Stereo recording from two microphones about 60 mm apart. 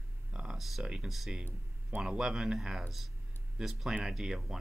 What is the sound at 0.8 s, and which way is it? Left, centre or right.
Speech, centre.